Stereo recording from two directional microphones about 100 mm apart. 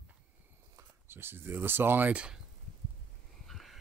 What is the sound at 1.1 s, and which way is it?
Speech, 20° right (ahead or behind).